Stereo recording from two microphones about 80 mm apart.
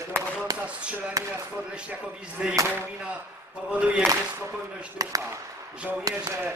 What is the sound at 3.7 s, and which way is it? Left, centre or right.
Speech, centre.